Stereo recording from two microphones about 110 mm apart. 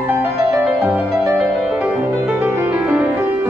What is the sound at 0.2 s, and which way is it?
Music, 20° right (ahead or behind).